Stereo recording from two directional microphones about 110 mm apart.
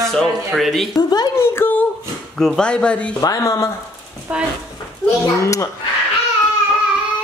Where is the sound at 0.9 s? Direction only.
40° left (ahead or behind).